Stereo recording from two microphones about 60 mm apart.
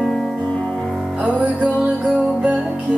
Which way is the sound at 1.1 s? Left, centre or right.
Right.